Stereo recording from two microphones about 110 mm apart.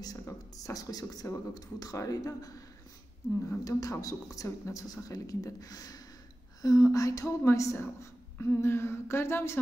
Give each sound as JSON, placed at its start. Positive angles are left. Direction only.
{"t": 0.0, "sound": "a woman's voice", "side_deg": 35}